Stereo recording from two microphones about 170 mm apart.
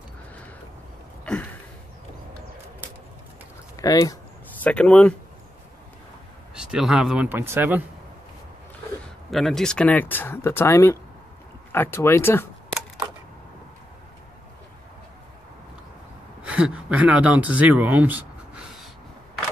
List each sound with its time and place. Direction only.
1.2 s a sound: 5° left (ahead or behind)
3.7 s speech: 20° left (ahead or behind)
4.5 s speech: 10° left (ahead or behind)
6.5 s speech: 5° right (ahead or behind)
9.3 s speech: centre (ahead or behind)
16.4 s speech: 5° right (ahead or behind)